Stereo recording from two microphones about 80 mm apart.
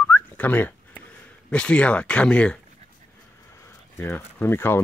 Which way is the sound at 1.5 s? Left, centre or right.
Centre.